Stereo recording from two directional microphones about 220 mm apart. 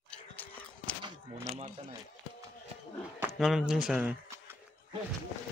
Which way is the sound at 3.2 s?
Centre (ahead or behind).